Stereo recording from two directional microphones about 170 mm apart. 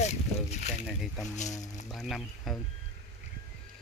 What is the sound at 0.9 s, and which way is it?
Speech, centre (ahead or behind).